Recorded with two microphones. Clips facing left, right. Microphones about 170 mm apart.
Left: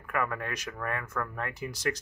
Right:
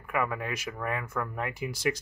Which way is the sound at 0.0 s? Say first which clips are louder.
Right 1 dB; 5° right (ahead or behind).